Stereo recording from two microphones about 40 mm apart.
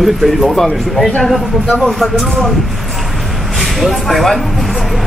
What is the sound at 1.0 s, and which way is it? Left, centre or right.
Speech, left.